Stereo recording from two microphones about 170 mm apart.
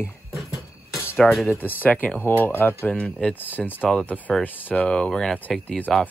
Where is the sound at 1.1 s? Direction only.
Centre (ahead or behind).